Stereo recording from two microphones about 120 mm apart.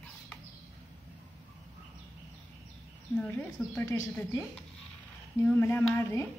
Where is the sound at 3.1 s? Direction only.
15° left (ahead or behind).